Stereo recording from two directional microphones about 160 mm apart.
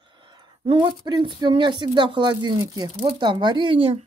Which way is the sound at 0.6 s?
30° right (ahead or behind).